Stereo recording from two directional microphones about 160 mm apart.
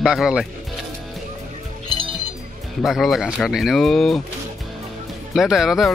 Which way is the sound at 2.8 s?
Centre (ahead or behind).